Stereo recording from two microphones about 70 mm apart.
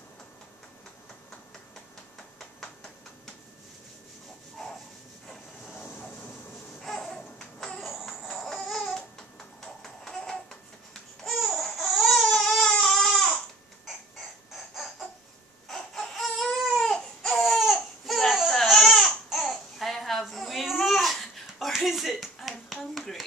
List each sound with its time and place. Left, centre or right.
2.1 s a sound: centre
4.6 s a sound: centre
5.8 s vehicle: left
6.8 s music: centre
9.6 s babbling: centre
14.7 s baby laughter: centre
15.7 s baby cry: centre
19.4 s babbling: centre